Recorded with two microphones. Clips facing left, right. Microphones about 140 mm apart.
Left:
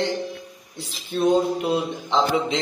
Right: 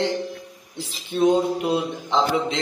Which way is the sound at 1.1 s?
15° right (ahead or behind).